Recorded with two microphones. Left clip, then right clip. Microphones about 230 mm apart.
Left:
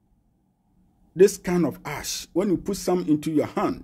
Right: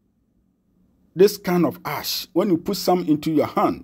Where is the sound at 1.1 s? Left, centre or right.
Centre.